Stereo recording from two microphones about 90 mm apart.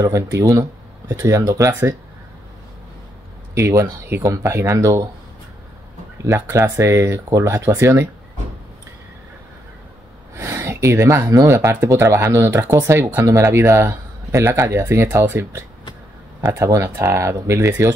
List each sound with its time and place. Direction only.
0.0 s speech: 35° right (ahead or behind)
3.5 s speech: 30° right (ahead or behind)
6.2 s speech: 30° right (ahead or behind)
10.3 s a sound: 30° right (ahead or behind)
11.3 s speech: 35° right (ahead or behind)